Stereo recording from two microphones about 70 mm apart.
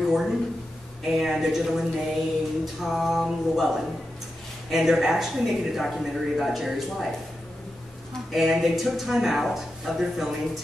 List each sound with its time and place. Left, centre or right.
0.0 s a sound: centre
1.0 s speech: centre
8.3 s speech: centre